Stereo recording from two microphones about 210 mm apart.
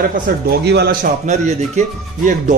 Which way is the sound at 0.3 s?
45° right (ahead or behind).